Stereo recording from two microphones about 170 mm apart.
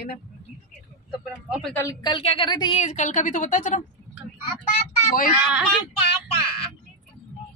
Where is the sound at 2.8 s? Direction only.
45° left (ahead or behind).